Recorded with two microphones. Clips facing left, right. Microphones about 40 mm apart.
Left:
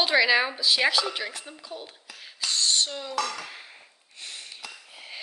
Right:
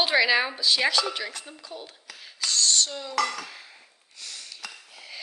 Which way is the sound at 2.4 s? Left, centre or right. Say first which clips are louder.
Even; left.